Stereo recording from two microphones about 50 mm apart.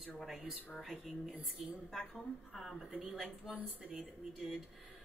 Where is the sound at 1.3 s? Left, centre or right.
Right.